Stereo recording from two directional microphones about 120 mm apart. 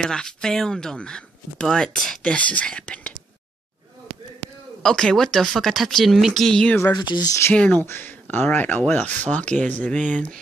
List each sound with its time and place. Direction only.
0.0 s speech: 5° left (ahead or behind)
4.8 s speech: 5° left (ahead or behind)
6.9 s speech: 35° left (ahead or behind)
7.5 s speech: 10° left (ahead or behind)